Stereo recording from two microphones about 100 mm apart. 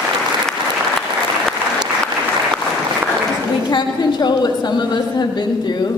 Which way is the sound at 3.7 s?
45° left (ahead or behind).